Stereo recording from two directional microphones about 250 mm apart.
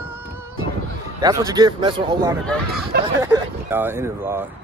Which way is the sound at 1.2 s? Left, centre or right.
Centre.